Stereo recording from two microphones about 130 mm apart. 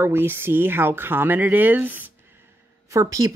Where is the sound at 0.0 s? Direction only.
15° right (ahead or behind).